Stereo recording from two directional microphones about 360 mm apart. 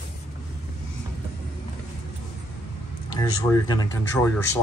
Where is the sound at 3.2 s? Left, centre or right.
Centre.